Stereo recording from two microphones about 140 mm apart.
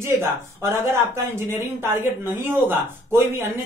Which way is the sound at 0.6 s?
20° right (ahead or behind).